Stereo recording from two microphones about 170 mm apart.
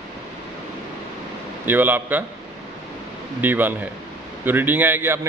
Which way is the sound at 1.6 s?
10° right (ahead or behind).